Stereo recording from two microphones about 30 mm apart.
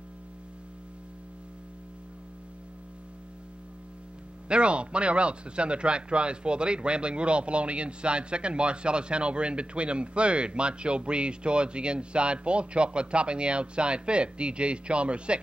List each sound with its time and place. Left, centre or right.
4.5 s speech: right